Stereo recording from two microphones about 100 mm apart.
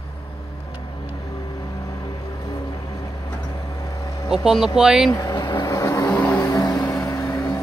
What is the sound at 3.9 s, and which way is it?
Vehicle, 35° left (ahead or behind).